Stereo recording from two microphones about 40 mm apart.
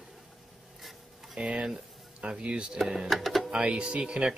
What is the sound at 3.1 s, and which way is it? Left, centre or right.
Speech, centre.